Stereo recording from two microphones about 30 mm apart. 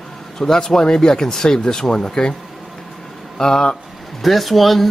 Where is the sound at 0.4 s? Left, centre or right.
Left.